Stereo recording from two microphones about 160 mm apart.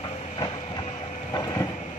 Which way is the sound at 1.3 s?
20° left (ahead or behind).